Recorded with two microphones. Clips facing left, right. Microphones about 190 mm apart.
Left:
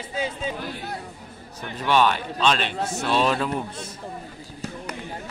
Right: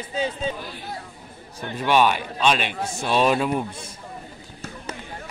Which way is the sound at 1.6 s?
10° right (ahead or behind).